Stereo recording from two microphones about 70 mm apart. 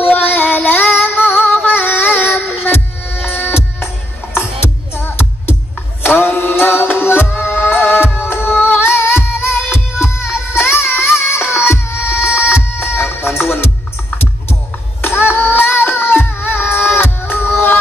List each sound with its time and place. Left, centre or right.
0.0 s female singing: left
3.3 s music: left
14.5 s music: left